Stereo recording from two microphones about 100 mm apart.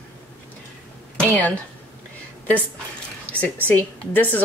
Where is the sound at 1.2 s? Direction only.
15° left (ahead or behind).